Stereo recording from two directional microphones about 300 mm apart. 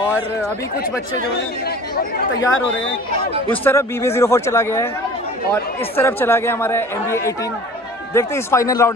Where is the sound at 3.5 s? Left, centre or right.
Centre.